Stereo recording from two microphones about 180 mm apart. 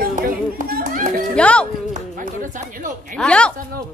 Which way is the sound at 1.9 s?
50° right (ahead or behind).